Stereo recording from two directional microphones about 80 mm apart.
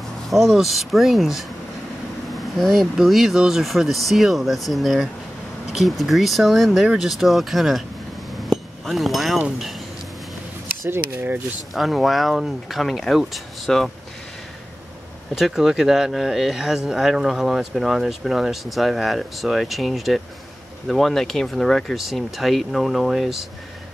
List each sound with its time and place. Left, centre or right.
0.3 s speech: centre
8.5 s chink: centre
10.9 s speech: right
11.7 s speech: centre
15.3 s speech: centre